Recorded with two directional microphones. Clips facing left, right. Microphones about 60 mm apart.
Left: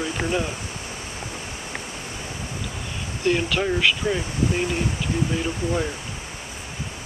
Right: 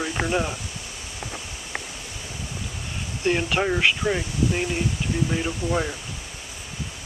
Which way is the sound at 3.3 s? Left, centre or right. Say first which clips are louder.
Even; right.